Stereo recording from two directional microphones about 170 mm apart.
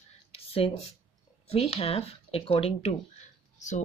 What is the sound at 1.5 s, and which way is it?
A woman's voice, 35° left (ahead or behind).